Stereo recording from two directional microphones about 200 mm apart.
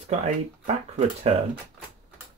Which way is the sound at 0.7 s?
35° right (ahead or behind).